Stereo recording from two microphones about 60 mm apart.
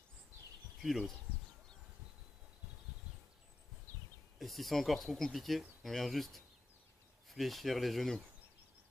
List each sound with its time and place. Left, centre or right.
0.8 s speech: centre
3.9 s a sound: left
4.4 s speech: centre